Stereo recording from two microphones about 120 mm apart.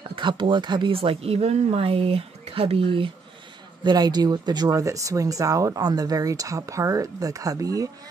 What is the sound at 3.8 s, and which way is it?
Speech, 35° right (ahead or behind).